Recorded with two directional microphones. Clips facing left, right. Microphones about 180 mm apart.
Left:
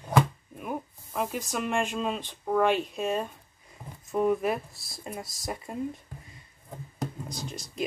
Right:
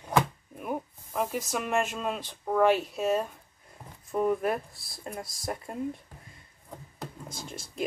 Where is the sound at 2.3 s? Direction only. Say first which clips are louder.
Right 2 dB; centre (ahead or behind).